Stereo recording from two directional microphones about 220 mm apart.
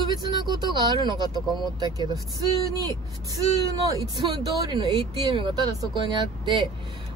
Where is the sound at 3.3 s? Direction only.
15° right (ahead or behind).